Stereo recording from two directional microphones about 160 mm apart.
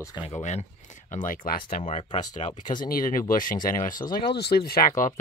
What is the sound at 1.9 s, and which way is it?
Speech, 45° left (ahead or behind).